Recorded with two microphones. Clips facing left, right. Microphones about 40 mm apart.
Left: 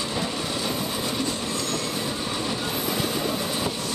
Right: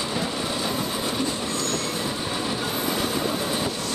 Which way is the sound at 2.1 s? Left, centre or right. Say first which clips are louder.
Right 1 dB; centre.